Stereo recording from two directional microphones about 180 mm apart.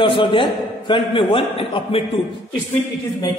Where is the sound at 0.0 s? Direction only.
30° left (ahead or behind).